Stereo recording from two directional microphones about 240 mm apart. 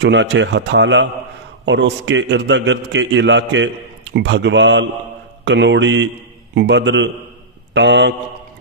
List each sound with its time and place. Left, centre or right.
0.0 s a man's voice: right